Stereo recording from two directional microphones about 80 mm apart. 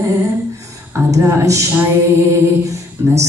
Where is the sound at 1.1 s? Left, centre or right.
Right.